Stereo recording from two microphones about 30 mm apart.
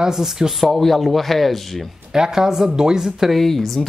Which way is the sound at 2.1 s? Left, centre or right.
Centre.